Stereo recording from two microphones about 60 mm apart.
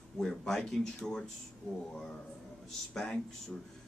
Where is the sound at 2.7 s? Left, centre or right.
Centre.